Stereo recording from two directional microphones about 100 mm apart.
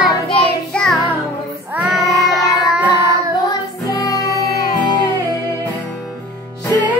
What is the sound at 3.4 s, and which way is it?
Music, 40° left (ahead or behind).